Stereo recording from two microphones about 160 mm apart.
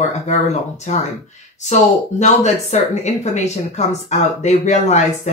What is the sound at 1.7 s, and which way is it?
Speech, 45° left (ahead or behind).